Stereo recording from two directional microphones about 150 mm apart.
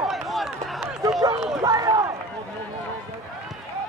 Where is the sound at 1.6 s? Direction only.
25° right (ahead or behind).